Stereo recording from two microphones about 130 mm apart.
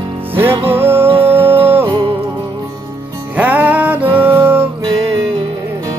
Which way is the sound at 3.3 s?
15° right (ahead or behind).